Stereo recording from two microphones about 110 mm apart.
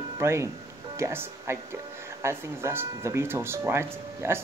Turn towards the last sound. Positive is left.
turn(degrees=-20)  # may be behind; listen again after turning